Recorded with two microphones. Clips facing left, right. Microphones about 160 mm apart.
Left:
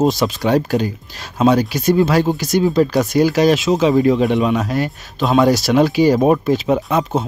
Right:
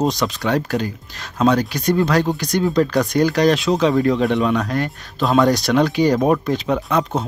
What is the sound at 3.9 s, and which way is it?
Speech, 20° left (ahead or behind).